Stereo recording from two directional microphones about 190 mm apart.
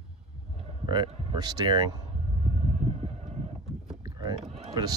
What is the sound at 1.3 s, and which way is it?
Speech, 20° right (ahead or behind).